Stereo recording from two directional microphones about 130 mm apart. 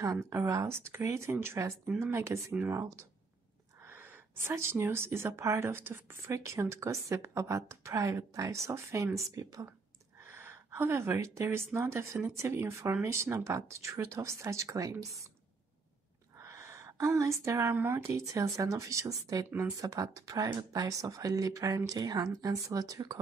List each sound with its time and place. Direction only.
0.0 s speech: 20° right (ahead or behind)
16.3 s a woman's voice: 25° right (ahead or behind)